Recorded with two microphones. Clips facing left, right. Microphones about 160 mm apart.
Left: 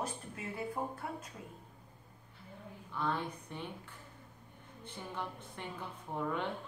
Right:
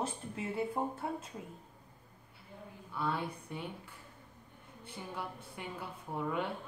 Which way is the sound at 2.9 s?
10° right (ahead or behind).